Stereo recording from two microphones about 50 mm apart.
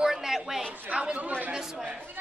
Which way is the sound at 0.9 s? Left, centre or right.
Right.